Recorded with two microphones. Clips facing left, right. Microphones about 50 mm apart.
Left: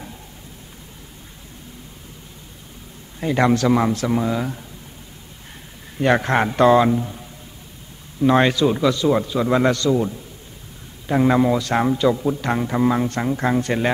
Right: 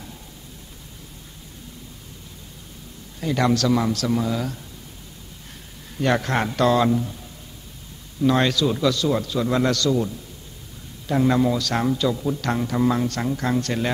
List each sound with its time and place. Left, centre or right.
3.2 s a man's voice: left
5.9 s a man's voice: left
8.3 s a man's voice: left